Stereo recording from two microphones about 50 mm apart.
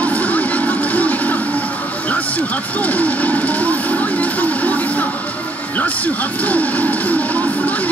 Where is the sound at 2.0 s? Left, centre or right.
Left.